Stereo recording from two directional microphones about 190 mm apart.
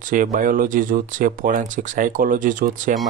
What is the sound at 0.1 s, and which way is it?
Speech, 45° right (ahead or behind).